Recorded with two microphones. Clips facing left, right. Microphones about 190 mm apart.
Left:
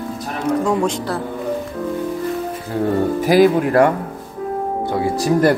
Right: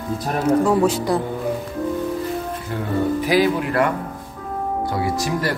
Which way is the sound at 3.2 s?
45° left (ahead or behind).